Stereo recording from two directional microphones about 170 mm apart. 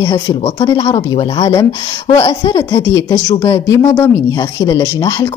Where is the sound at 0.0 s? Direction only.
25° left (ahead or behind).